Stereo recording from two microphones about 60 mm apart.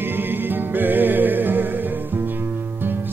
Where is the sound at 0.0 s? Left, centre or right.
Right.